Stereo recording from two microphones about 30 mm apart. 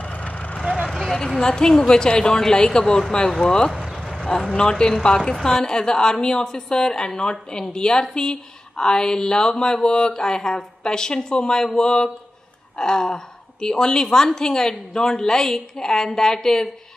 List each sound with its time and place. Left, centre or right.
0.0 s vehicle: left
1.1 s a woman's voice: centre
4.6 s a woman's voice: left